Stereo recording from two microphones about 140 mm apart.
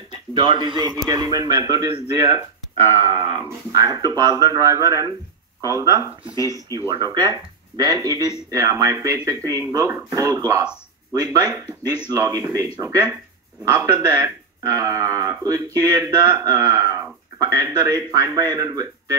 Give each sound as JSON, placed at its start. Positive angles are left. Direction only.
{"t": 0.1, "sound": "speech", "side_deg": -35}
{"t": 3.0, "sound": "speech", "side_deg": -30}
{"t": 6.3, "sound": "speech", "side_deg": 25}
{"t": 6.9, "sound": "speech", "side_deg": -30}